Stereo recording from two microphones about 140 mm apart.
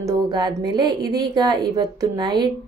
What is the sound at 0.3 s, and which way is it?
A woman's voice, 30° right (ahead or behind).